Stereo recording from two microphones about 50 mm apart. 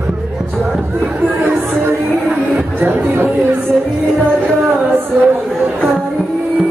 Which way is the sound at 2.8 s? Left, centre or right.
Right.